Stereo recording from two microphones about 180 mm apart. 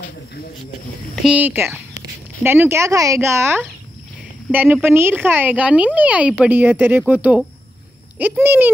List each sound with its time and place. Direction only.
1.2 s speech: 10° right (ahead or behind)